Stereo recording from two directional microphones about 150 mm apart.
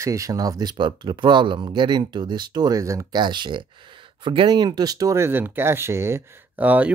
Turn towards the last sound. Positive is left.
turn(degrees=-10)  # may be behind; listen again after turning